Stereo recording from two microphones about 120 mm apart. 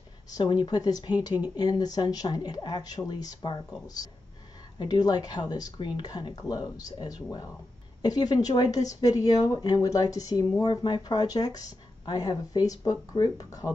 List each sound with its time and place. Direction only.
0.3 s a woman's voice: 40° left (ahead or behind)